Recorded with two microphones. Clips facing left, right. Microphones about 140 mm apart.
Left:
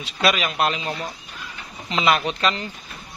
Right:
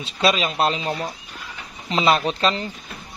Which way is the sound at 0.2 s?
25° right (ahead or behind).